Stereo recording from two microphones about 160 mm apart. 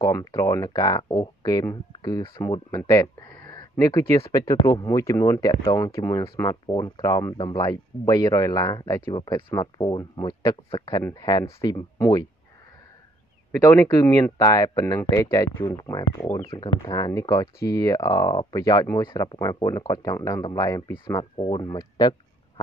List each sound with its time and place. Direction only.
0.0 s speech: 20° left (ahead or behind)
13.7 s speech: 15° left (ahead or behind)